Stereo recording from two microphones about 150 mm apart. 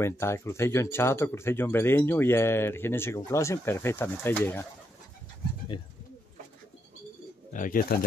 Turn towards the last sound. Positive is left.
turn(degrees=70)  # may be behind; listen again after turning